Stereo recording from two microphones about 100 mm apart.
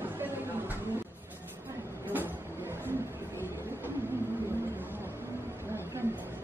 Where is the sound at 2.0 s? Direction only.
20° right (ahead or behind).